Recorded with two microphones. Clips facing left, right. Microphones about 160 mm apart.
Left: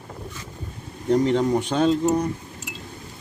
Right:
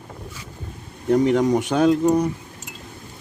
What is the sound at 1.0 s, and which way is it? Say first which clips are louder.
Speech: right 2 dB; 10° right (ahead or behind).